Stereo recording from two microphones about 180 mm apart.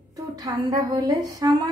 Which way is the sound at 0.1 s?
20° right (ahead or behind).